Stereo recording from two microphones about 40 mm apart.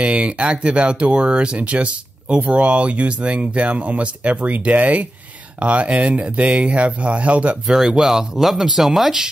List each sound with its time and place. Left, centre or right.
0.0 s speech: right
7.6 s speech: centre